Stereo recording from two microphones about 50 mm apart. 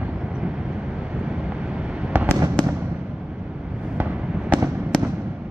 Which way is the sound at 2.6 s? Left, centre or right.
Left.